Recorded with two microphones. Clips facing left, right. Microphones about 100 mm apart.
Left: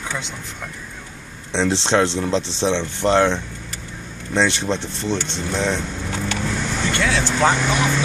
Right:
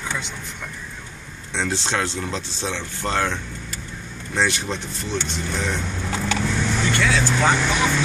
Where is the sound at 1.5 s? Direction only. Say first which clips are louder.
Left 6 dB; 25° left (ahead or behind).